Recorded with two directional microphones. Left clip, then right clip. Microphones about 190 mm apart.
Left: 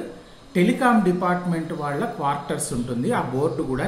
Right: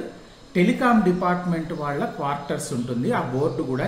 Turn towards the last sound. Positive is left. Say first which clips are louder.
# even
turn(degrees=0)  # may be behind; listen again after turning